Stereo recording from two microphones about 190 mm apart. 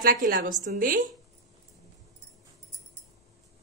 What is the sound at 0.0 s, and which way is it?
A woman's voice, 45° right (ahead or behind).